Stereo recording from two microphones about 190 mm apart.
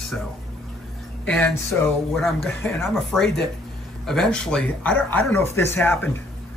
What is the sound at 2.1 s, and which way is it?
Speech, centre (ahead or behind).